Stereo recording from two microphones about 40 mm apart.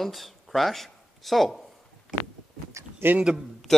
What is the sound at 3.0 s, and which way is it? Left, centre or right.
Speech, right.